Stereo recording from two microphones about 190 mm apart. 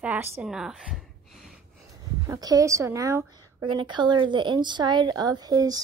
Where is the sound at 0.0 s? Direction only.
10° right (ahead or behind).